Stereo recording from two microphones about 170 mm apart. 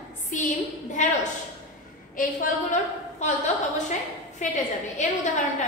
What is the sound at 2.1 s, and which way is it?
A woman's voice, 50° left (ahead or behind).